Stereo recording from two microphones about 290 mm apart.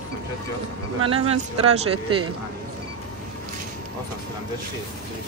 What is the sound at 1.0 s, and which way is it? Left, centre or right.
Speech, centre.